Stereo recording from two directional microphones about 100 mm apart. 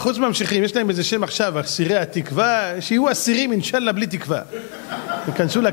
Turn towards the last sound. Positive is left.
turn(degrees=15)  # may be behind; listen again after turning